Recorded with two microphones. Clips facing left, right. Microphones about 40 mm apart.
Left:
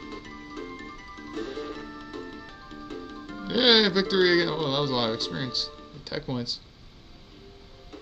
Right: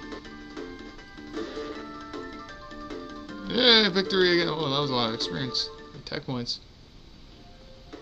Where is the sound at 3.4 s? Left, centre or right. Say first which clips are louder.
Even; centre.